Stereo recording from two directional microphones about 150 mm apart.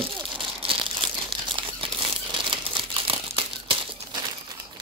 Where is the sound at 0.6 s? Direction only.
35° right (ahead or behind).